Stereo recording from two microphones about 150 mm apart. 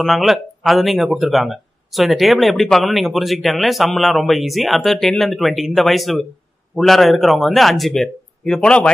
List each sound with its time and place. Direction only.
0.0 s speech: centre (ahead or behind)